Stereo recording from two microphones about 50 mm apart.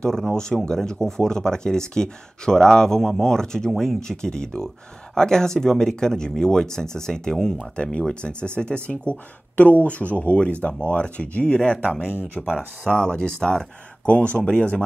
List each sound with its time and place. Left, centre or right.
0.0 s speech: centre
12.4 s speech: centre
14.0 s speech: left